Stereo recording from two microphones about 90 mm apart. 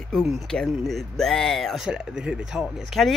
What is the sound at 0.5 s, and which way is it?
Speech, 5° left (ahead or behind).